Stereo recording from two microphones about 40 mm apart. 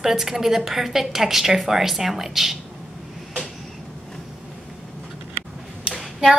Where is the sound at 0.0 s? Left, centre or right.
Centre.